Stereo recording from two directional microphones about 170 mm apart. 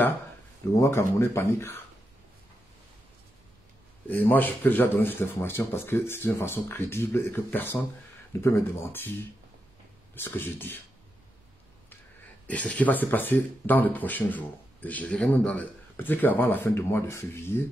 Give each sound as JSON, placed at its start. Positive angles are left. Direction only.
{"t": 0.7, "sound": "speech", "side_deg": 15}
{"t": 4.1, "sound": "speech", "side_deg": 10}
{"t": 12.4, "sound": "speech", "side_deg": 10}